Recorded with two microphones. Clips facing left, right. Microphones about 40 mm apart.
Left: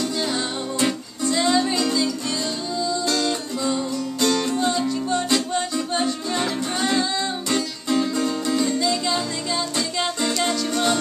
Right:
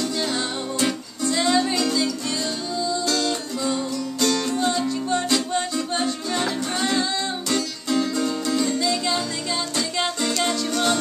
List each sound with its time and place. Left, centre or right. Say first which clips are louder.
0.2 s music: even; centre
3.1 s music: left 1 dB; centre
4.2 s music: left 1 dB; centre
4.6 s music: left 1 dB; centre
8.7 s music: left 1 dB; centre
10.2 s music: left 1 dB; centre